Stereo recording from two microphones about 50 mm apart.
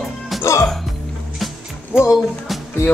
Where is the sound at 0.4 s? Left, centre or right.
Left.